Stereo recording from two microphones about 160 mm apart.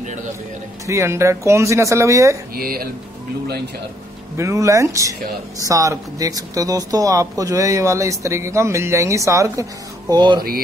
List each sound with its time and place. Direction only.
0.0 s music: 50° right (ahead or behind)
0.8 s speech: 15° right (ahead or behind)
2.5 s speech: 70° right (ahead or behind)
4.4 s speech: 20° right (ahead or behind)